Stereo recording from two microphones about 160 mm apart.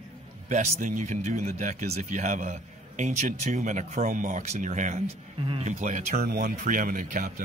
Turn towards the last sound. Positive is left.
turn(degrees=-55)  # may be behind; listen again after turning